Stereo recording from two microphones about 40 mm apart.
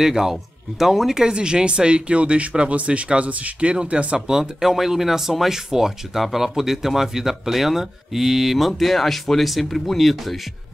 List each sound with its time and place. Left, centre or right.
0.0 s speech: centre
1.2 s speech: right
4.3 s speech: centre